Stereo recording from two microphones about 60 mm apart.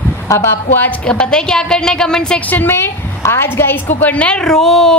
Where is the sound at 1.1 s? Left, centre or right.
Centre.